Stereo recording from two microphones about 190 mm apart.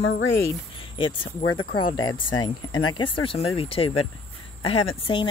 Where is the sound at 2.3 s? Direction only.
25° left (ahead or behind).